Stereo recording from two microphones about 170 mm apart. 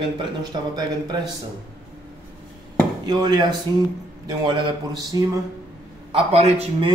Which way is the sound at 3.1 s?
25° right (ahead or behind).